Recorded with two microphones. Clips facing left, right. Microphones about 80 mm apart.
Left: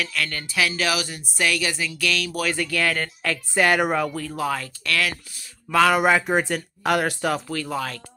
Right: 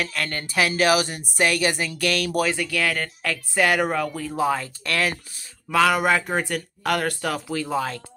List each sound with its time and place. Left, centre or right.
0.0 s speech: right
2.4 s speech: centre
4.4 s speech: right
5.7 s speech: centre
7.4 s speech: centre